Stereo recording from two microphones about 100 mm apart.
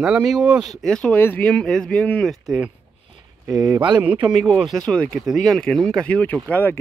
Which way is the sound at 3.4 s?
35° right (ahead or behind).